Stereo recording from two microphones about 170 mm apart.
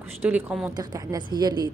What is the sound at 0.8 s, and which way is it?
Speech, 25° right (ahead or behind).